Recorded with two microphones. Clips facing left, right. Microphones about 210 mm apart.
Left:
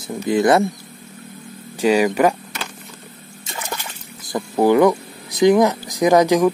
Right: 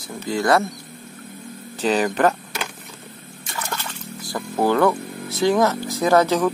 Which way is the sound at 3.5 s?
20° left (ahead or behind).